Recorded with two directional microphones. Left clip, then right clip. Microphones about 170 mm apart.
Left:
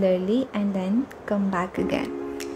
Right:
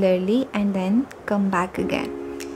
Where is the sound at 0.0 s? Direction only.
20° right (ahead or behind).